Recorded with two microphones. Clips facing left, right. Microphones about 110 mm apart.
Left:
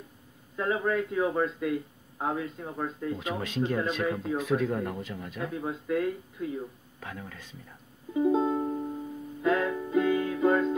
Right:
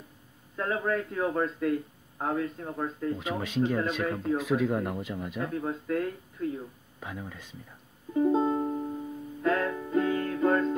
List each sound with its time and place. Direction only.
0.6 s a man's voice: 10° left (ahead or behind)
4.7 s speech: 15° right (ahead or behind)
5.4 s speech: 5° left (ahead or behind)
7.0 s speech: 10° right (ahead or behind)
8.1 s music: 10° left (ahead or behind)
9.4 s music: 10° left (ahead or behind)